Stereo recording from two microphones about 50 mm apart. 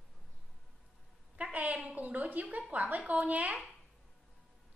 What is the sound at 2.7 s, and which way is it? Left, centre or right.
Music, right.